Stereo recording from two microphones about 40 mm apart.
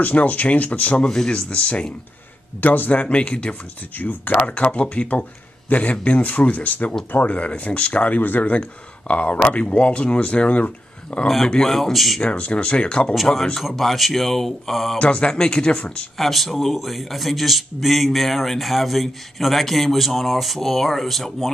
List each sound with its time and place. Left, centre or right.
0.0 s speech: left
1.0 s speech: centre
1.5 s speech: left
2.6 s speech: left
2.9 s speech: left
4.0 s speech: left
4.4 s speech: left
8.2 s speech: left
11.4 s speech: centre
12.2 s speech: left
13.1 s a man's voice: centre
15.0 s speech: left
16.2 s a man's voice: centre